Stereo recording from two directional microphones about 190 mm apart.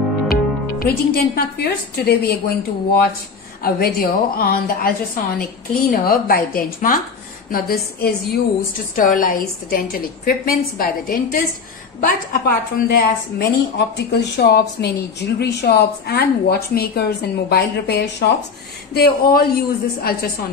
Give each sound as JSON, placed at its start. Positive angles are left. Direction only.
{"t": 0.3, "sound": "speech", "side_deg": 50}
{"t": 3.6, "sound": "a woman's voice", "side_deg": 50}